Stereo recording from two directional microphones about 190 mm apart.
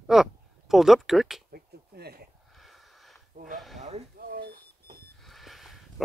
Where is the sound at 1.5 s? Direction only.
55° right (ahead or behind).